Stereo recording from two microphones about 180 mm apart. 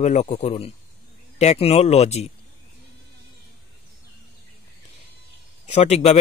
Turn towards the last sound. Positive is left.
turn(degrees=35)  # may be behind; listen again after turning